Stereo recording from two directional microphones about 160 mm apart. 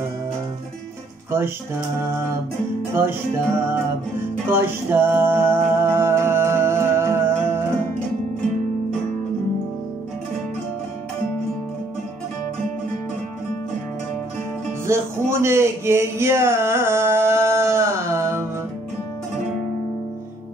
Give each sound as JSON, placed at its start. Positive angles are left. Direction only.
{"t": 2.9, "sound": "speech", "side_deg": -15}
{"t": 5.8, "sound": "music", "side_deg": -15}
{"t": 14.9, "sound": "a sound", "side_deg": -15}